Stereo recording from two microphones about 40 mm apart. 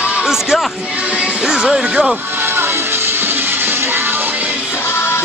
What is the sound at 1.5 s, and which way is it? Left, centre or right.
Speech, centre.